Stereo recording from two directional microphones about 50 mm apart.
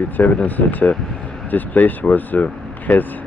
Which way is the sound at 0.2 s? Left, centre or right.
Left.